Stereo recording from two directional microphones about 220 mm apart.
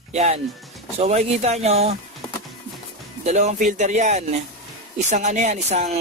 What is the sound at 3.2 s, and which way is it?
Speech, 30° right (ahead or behind).